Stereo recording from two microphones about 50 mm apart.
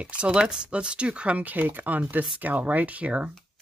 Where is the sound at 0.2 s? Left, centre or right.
Centre.